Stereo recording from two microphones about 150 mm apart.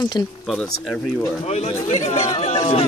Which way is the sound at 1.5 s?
45° left (ahead or behind).